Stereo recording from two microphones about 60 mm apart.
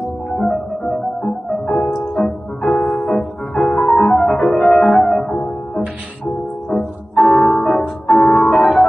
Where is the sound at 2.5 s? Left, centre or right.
Left.